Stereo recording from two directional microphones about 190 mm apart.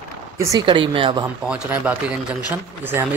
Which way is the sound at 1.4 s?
5° right (ahead or behind).